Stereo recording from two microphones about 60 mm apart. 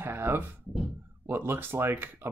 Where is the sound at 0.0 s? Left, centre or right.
Right.